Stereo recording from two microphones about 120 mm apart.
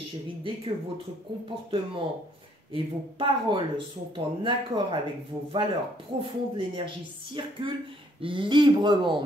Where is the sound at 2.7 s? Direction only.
45° right (ahead or behind).